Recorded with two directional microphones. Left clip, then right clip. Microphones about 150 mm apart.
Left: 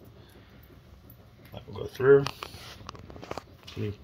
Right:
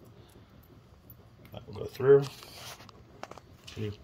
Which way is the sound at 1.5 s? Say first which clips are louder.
Left 3 dB; 10° left (ahead or behind).